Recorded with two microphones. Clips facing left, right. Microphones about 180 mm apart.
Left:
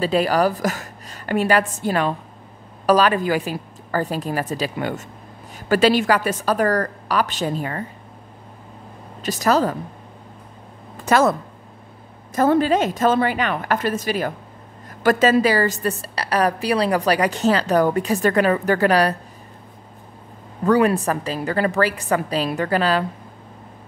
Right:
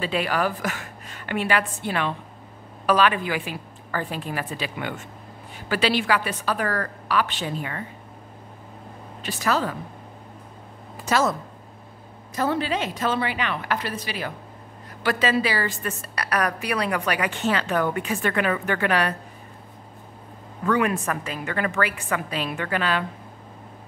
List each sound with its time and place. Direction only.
0.0 s a woman's voice: 40° left (ahead or behind)
9.2 s a woman's voice: 40° left (ahead or behind)
11.1 s a woman's voice: 55° left (ahead or behind)
12.4 s a woman's voice: 45° left (ahead or behind)
20.6 s a woman's voice: 35° left (ahead or behind)